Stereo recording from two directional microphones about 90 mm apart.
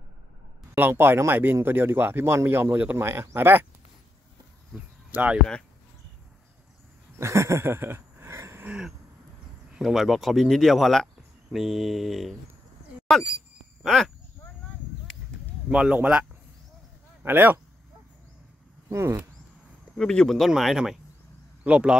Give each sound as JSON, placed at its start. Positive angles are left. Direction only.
{"t": 0.7, "sound": "speech", "side_deg": -25}
{"t": 5.1, "sound": "speech", "side_deg": -15}
{"t": 7.2, "sound": "a sound", "side_deg": -35}
{"t": 8.6, "sound": "a sound", "side_deg": -10}
{"t": 9.8, "sound": "speech", "side_deg": 0}
{"t": 13.8, "sound": "speech", "side_deg": 0}
{"t": 15.7, "sound": "speech", "side_deg": -10}
{"t": 18.9, "sound": "speech", "side_deg": -30}
{"t": 20.0, "sound": "speech", "side_deg": 10}